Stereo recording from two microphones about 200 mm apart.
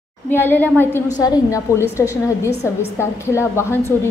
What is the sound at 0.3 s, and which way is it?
A woman's voice, 10° left (ahead or behind).